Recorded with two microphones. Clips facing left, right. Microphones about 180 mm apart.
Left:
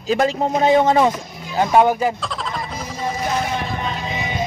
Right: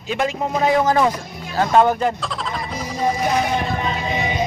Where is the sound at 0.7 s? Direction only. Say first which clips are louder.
Left 2 dB; 25° left (ahead or behind).